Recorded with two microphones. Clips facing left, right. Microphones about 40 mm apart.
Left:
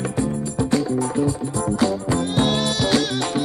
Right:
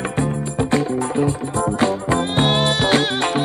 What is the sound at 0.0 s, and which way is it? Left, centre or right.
Music, right.